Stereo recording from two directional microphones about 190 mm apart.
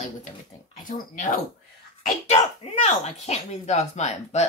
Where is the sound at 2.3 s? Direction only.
35° left (ahead or behind).